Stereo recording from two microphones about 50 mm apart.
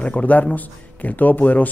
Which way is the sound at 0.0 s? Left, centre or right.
Left.